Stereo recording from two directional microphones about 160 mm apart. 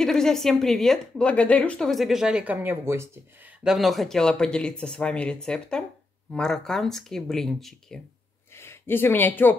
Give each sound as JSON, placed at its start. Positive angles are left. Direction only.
{"t": 0.0, "sound": "a woman's voice", "side_deg": 5}
{"t": 3.6, "sound": "a woman's voice", "side_deg": 0}
{"t": 8.5, "sound": "speech", "side_deg": 15}